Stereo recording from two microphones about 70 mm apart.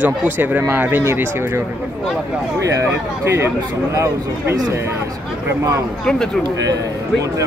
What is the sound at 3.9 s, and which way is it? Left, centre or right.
Speech, right.